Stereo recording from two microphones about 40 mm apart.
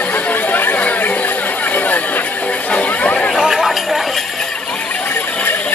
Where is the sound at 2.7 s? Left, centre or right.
Left.